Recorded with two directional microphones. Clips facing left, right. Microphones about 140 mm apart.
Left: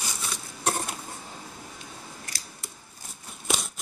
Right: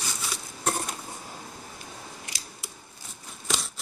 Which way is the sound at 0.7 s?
Centre (ahead or behind).